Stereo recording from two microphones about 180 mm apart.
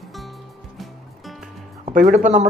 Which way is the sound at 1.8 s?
40° right (ahead or behind).